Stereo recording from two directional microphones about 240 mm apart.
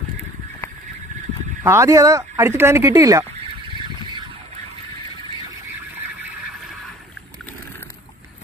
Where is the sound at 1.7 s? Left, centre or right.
Centre.